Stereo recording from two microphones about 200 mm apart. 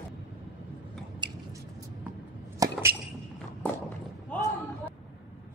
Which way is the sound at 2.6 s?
15° right (ahead or behind).